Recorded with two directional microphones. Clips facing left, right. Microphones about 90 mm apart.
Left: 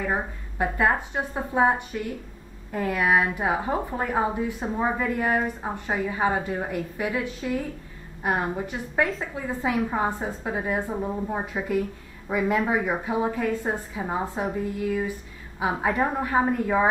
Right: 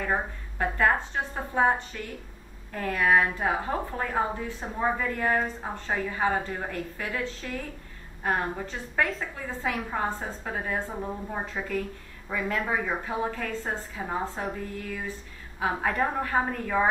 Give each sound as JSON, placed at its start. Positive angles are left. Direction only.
{"t": 0.0, "sound": "a woman's voice", "side_deg": 10}